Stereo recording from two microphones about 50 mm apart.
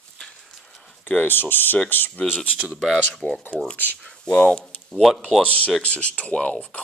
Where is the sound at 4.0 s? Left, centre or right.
Centre.